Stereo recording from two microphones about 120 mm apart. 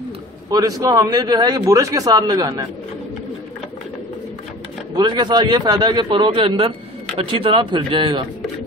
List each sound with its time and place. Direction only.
0.5 s a man's voice: 30° right (ahead or behind)
4.9 s a man's voice: 35° right (ahead or behind)